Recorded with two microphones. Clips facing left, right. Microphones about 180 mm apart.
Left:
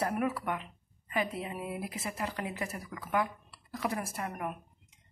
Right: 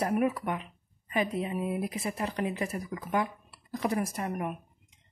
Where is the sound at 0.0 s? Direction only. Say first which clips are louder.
Right 4 dB; 20° right (ahead or behind).